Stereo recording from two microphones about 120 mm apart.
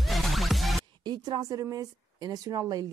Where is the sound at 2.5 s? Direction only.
35° right (ahead or behind).